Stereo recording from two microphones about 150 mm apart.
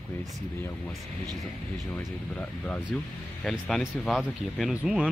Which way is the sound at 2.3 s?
5° left (ahead or behind).